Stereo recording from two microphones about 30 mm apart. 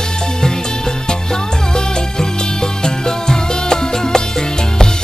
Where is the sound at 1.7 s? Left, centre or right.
Left.